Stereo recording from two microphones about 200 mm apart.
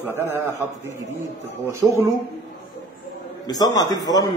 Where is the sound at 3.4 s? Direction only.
20° left (ahead or behind).